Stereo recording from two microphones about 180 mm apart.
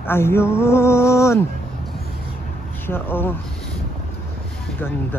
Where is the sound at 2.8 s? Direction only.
10° left (ahead or behind).